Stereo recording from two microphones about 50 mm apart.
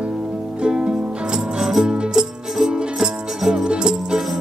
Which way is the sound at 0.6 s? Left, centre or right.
Centre.